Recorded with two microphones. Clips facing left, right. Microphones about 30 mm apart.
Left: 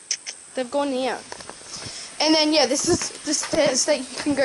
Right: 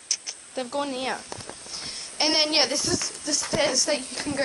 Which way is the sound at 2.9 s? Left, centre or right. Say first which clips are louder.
Left 6 dB; centre.